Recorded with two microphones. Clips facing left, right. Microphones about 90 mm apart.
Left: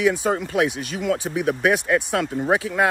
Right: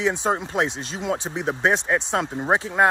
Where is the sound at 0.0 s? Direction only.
20° right (ahead or behind).